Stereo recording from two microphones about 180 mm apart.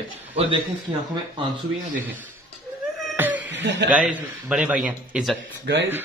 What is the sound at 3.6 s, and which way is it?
Speech, 75° right (ahead or behind).